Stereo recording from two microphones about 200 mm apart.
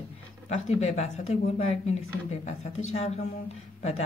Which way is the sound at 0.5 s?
35° left (ahead or behind).